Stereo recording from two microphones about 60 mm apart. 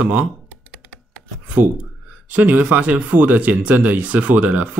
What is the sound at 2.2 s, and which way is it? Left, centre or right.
Speech, right.